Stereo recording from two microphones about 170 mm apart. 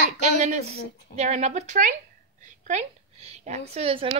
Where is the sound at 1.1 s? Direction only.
40° right (ahead or behind).